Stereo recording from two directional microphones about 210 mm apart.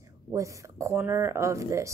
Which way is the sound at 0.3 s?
15° right (ahead or behind).